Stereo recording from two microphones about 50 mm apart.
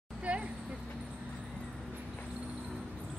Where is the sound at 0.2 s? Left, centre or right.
Right.